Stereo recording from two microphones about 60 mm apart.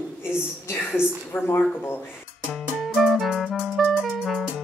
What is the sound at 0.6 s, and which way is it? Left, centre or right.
A woman's voice, left.